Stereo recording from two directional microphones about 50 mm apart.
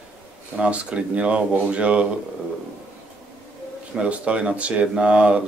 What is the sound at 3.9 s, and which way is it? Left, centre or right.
Speech, right.